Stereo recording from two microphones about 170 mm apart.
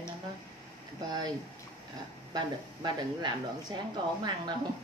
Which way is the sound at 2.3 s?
25° right (ahead or behind).